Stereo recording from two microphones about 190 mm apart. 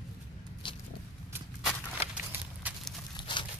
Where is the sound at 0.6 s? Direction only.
25° left (ahead or behind).